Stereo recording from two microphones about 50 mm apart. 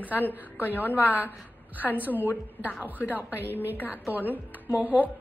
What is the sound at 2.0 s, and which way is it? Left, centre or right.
Speech, right.